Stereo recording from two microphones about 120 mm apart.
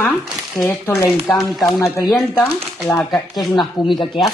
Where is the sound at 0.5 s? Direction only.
20° left (ahead or behind).